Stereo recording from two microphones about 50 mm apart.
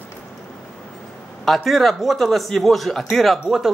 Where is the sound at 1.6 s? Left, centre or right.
Centre.